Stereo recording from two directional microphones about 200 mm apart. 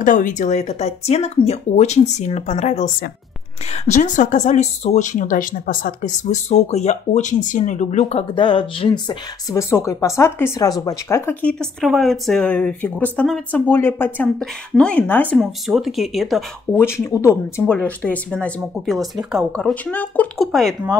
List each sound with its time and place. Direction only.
0.0 s speech: 40° left (ahead or behind); by 16.8 s centre (ahead or behind)
16.8 s speech: 15° left (ahead or behind)